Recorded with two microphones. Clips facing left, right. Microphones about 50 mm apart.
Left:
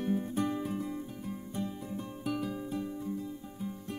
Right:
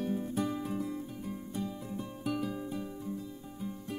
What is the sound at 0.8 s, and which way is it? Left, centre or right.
Music, centre.